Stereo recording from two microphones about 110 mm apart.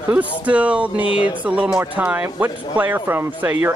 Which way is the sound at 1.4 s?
10° right (ahead or behind).